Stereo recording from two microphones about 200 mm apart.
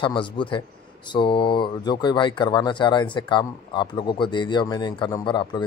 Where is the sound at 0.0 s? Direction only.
25° left (ahead or behind).